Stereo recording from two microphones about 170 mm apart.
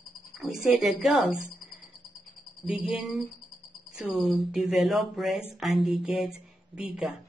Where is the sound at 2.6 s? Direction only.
5° right (ahead or behind).